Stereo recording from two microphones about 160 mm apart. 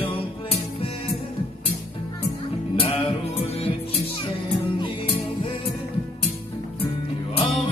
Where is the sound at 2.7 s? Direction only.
35° left (ahead or behind).